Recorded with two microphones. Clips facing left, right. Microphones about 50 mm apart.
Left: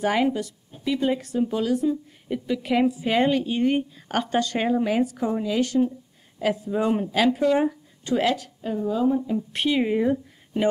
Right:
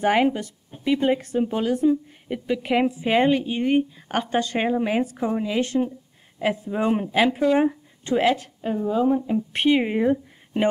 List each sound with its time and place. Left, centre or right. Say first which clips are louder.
0.0 s a woman's voice: right 2 dB; right